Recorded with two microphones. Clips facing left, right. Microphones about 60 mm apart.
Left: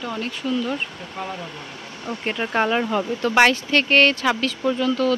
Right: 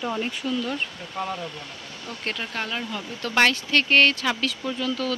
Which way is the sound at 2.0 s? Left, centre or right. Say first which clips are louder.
Left 6 dB; left.